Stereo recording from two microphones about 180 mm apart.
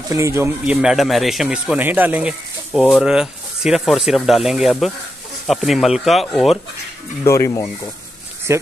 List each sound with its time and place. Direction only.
0.1 s speech: 15° right (ahead or behind)
0.7 s speech: centre (ahead or behind)
7.2 s speech: 15° left (ahead or behind)
8.5 s speech: 15° right (ahead or behind)